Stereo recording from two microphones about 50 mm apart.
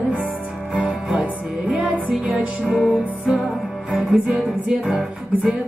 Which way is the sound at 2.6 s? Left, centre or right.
Centre.